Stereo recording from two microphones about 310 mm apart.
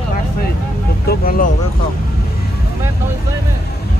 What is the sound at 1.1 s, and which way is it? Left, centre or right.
Speech, left.